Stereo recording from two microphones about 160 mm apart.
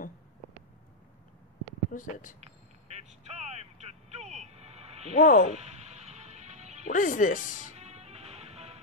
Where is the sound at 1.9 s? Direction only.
55° left (ahead or behind).